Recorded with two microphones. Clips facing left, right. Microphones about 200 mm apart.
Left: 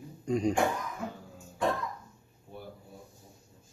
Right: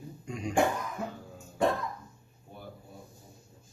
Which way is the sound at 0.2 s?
35° left (ahead or behind).